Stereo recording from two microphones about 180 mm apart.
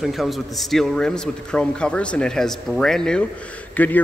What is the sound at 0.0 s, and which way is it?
Speech, centre (ahead or behind).